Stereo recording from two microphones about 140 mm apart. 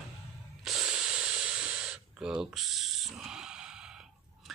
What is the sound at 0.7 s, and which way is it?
Hiss, 5° right (ahead or behind).